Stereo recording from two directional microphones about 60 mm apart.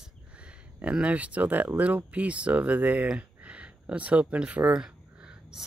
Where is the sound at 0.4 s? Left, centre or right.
Centre.